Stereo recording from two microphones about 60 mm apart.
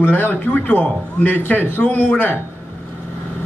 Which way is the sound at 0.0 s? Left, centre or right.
Left.